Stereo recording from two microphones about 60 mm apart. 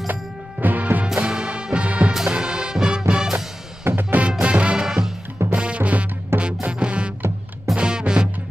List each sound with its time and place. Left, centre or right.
0.1 s music: right
1.0 s music: centre
3.8 s music: right
4.3 s music: centre
4.8 s music: centre
5.5 s music: right